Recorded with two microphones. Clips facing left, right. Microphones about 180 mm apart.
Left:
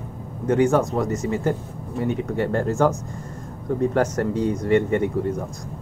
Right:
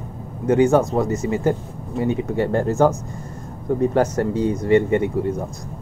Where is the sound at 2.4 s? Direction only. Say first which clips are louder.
Right 3 dB; 30° right (ahead or behind).